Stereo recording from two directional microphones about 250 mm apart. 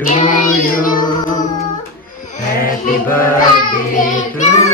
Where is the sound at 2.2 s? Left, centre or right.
Left.